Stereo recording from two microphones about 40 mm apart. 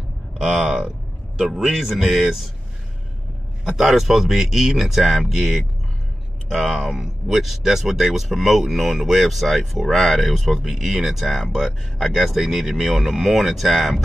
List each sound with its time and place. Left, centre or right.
0.4 s speech: centre
3.7 s speech: centre